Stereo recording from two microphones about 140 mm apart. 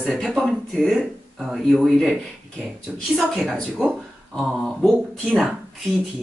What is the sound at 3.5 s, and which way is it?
Speech, 5° right (ahead or behind).